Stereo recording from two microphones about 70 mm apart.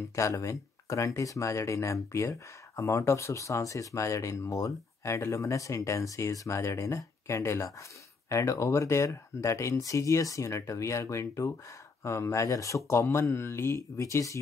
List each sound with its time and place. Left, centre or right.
0.1 s speech: left